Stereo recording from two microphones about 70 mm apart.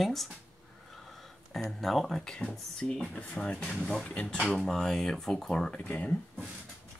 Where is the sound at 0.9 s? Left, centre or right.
Centre.